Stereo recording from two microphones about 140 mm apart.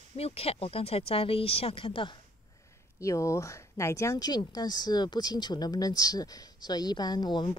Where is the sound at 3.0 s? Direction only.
20° left (ahead or behind).